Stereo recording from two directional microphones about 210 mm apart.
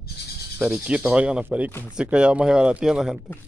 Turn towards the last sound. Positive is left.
turn(degrees=-5)  # may be behind; listen again after turning